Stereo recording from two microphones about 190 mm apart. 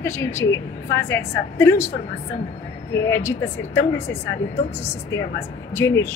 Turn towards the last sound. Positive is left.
turn(degrees=15)  # may be behind; listen again after turning